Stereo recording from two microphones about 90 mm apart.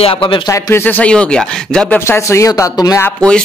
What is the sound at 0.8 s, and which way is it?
Speech, 15° left (ahead or behind).